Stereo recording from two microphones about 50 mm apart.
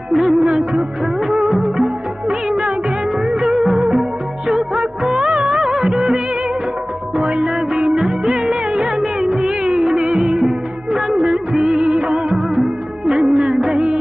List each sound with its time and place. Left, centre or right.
0.1 s music of bollywood: centre
2.2 s music: centre
3.4 s music: centre
4.5 s music of bollywood: centre
5.4 s music: centre
7.2 s music: centre
7.7 s music of bollywood: centre
11.8 s music of bollywood: centre
12.4 s music of bollywood: centre
13.6 s music: centre